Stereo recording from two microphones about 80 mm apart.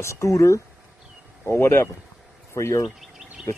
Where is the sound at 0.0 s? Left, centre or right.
Left.